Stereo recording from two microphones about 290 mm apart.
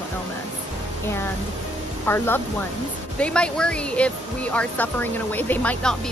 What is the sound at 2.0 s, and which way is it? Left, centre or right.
Speech, centre.